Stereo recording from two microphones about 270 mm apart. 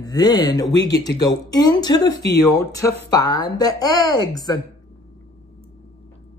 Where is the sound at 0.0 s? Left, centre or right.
Centre.